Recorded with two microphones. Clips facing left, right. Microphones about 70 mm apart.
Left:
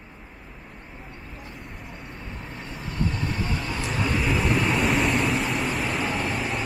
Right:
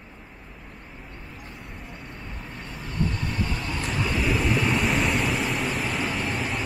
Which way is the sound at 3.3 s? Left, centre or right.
Centre.